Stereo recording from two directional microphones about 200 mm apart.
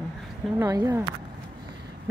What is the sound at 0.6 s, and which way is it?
Speech, 20° right (ahead or behind).